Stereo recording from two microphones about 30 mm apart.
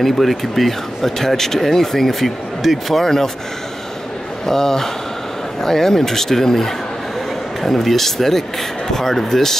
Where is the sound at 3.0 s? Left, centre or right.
Centre.